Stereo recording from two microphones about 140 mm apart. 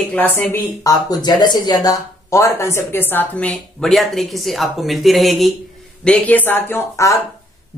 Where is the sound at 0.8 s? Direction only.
25° left (ahead or behind); by 5.6 s centre (ahead or behind).